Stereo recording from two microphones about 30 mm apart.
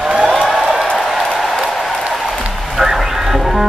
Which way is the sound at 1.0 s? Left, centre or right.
Centre.